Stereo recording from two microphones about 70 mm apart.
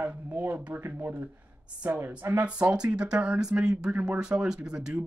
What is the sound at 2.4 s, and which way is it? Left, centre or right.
Speech, centre.